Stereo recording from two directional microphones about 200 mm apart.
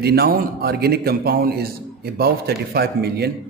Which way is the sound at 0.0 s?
50° right (ahead or behind).